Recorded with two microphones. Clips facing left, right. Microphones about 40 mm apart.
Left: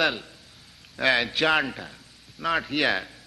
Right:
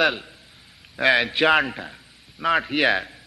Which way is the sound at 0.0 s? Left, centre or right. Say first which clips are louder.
Right 4 dB; centre.